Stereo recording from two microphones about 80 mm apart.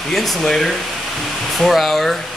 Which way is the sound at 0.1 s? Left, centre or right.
Centre.